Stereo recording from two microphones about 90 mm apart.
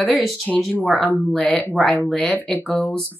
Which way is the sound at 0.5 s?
5° left (ahead or behind).